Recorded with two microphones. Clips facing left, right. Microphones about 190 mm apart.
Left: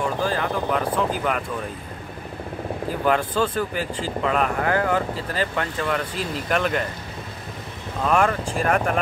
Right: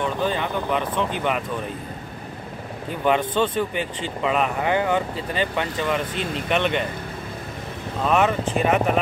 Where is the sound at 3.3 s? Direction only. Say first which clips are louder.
Right 1 dB; 25° right (ahead or behind).